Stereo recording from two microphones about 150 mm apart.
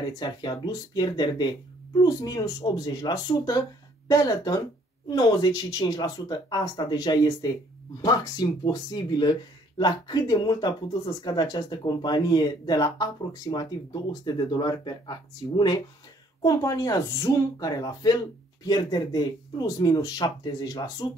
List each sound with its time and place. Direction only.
0.2 s speech: 30° left (ahead or behind)